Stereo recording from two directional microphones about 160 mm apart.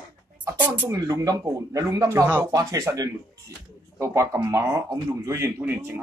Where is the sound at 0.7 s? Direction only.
20° right (ahead or behind).